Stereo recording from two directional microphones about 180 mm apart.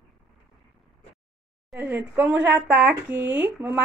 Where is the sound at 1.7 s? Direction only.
10° right (ahead or behind).